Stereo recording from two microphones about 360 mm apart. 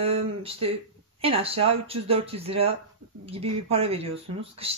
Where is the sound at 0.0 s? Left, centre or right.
Centre.